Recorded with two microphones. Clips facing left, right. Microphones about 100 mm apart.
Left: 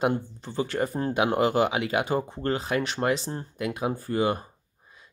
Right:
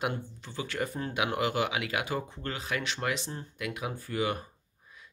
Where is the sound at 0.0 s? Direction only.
35° left (ahead or behind).